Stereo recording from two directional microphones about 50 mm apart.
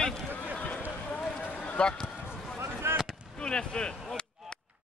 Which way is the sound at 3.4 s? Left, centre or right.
Centre.